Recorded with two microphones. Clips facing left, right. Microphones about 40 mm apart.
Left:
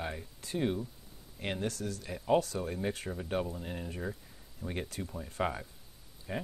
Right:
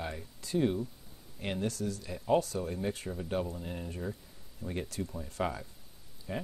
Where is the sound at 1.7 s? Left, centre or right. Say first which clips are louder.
Right 2 dB; left.